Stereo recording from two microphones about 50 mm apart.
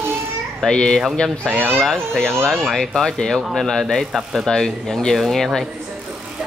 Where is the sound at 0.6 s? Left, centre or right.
Centre.